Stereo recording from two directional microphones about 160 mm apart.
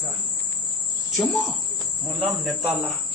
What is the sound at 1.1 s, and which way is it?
Speech, centre (ahead or behind).